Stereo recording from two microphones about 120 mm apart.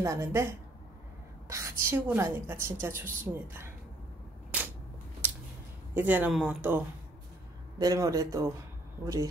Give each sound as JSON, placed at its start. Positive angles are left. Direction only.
{"t": 0.0, "sound": "a woman's voice", "side_deg": -25}
{"t": 4.5, "sound": "a sound", "side_deg": -10}
{"t": 5.9, "sound": "speech", "side_deg": -10}
{"t": 7.8, "sound": "a woman's voice", "side_deg": -30}